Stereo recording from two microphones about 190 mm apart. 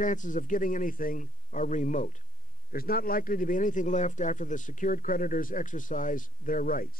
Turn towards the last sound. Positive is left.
turn(degrees=45)  # may be behind; listen again after turning